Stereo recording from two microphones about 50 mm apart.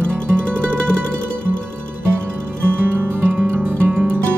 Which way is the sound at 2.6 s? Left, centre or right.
Right.